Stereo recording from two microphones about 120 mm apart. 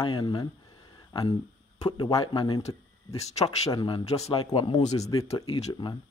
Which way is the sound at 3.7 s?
35° left (ahead or behind).